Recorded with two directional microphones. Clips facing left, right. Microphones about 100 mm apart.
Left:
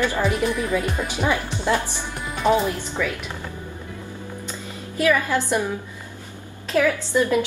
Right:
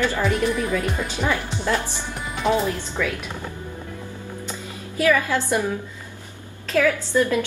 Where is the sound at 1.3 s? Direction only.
20° left (ahead or behind).